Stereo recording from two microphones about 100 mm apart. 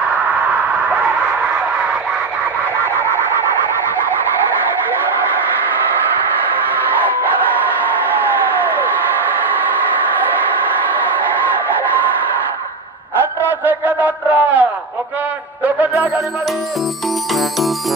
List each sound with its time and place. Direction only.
13.5 s a sound: 20° right (ahead or behind)
15.6 s music: 15° right (ahead or behind)
17.3 s music: centre (ahead or behind)